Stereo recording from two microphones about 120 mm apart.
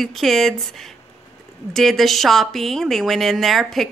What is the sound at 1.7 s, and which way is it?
Speech, centre (ahead or behind).